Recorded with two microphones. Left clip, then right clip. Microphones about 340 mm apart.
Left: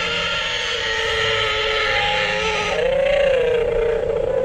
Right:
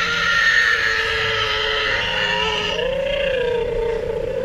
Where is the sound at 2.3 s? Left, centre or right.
Centre.